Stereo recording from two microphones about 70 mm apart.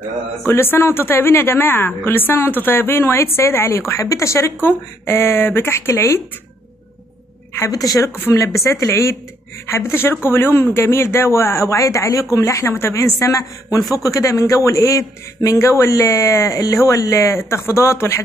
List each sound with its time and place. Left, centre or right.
0.5 s a woman's voice: left
7.7 s speech: left
8.2 s a man's voice: left